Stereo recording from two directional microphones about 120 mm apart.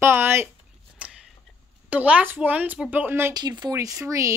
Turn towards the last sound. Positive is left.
turn(degrees=-25)  # may be behind; listen again after turning